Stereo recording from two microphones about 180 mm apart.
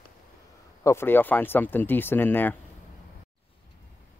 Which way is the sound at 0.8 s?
15° left (ahead or behind).